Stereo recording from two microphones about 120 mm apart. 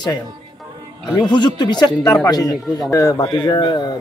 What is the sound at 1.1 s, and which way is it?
Speech, 40° left (ahead or behind).